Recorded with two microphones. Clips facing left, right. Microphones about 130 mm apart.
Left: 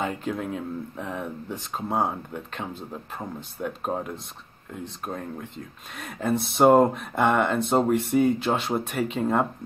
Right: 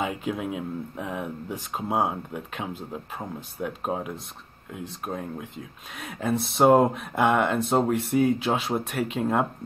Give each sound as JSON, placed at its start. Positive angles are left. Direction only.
{"t": 0.0, "sound": "speech", "side_deg": -5}